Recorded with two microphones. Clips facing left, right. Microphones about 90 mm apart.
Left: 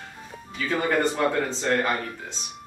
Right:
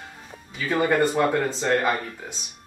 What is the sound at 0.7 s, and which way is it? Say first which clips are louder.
Speech: right 3 dB; 10° right (ahead or behind).